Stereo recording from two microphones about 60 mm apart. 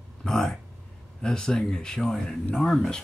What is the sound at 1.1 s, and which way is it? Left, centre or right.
Speech, centre.